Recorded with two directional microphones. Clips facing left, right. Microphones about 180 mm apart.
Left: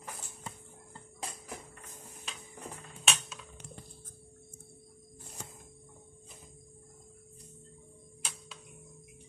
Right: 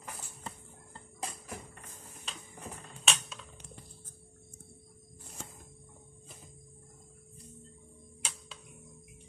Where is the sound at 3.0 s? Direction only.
5° left (ahead or behind).